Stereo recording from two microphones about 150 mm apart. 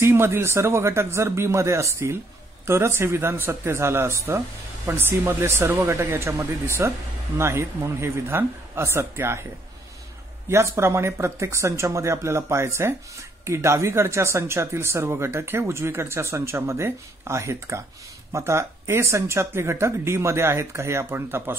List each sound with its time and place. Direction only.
0.0 s speech: 15° right (ahead or behind)
10.5 s speech: 15° right (ahead or behind)